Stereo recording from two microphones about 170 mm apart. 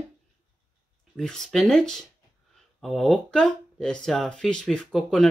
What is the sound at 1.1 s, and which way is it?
Speech, centre (ahead or behind).